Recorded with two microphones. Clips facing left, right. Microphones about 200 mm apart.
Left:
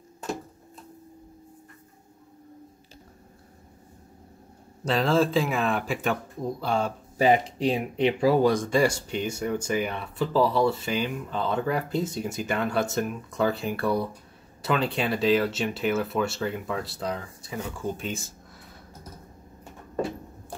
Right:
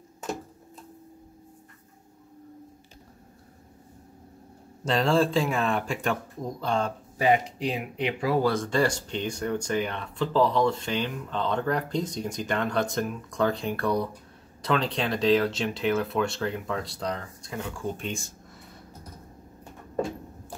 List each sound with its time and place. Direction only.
4.8 s speech: centre (ahead or behind)
7.6 s speech: 30° left (ahead or behind)
8.5 s speech: 10° left (ahead or behind)